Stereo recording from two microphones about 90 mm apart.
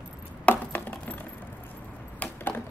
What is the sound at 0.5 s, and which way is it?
Coin, 20° left (ahead or behind).